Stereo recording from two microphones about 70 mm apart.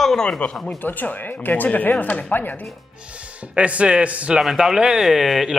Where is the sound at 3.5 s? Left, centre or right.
Centre.